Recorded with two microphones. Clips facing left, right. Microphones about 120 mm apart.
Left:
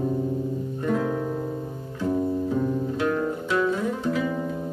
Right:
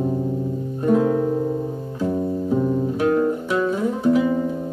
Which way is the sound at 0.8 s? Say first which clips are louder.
Right 8 dB; 25° right (ahead or behind).